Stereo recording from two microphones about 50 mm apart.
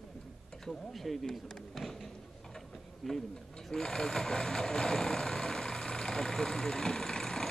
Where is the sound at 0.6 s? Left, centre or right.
Centre.